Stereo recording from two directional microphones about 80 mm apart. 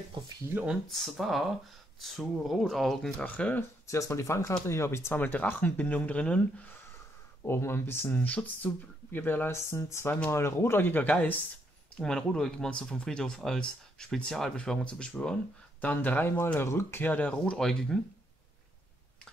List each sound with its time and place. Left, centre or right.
0.8 s speech: centre
3.3 s speech: centre
3.8 s speech: left
5.1 s speech: left
7.4 s speech: left
9.5 s speech: left
12.0 s speech: centre; by 17.1 s left
17.1 s speech: centre